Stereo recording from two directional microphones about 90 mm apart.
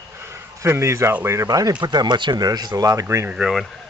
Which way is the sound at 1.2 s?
40° right (ahead or behind).